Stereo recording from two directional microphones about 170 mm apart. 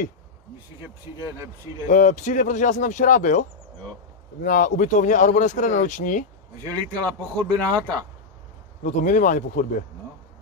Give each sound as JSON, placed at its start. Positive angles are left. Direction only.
{"t": 1.9, "sound": "speech", "side_deg": 45}
{"t": 6.6, "sound": "speech", "side_deg": 10}
{"t": 8.8, "sound": "speech", "side_deg": 50}